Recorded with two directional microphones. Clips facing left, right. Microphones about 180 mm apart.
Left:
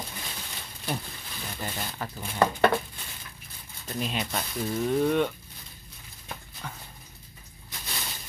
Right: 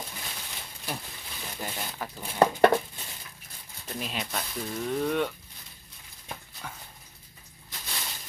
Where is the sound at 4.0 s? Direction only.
Centre (ahead or behind).